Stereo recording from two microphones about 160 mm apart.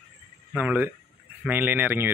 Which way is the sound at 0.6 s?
10° right (ahead or behind).